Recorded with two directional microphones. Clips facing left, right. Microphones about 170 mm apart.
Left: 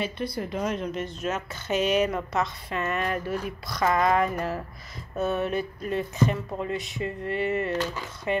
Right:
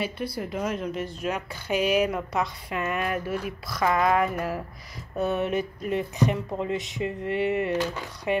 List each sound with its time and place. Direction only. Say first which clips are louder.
0.0 s speech: even; 10° right (ahead or behind)